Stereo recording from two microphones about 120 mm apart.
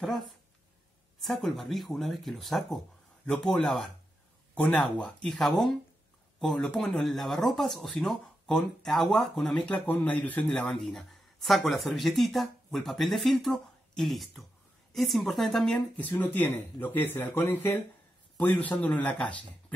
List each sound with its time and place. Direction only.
0.0 s speech: centre (ahead or behind)